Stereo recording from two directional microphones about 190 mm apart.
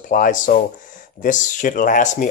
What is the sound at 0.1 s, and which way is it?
Speech, 45° left (ahead or behind).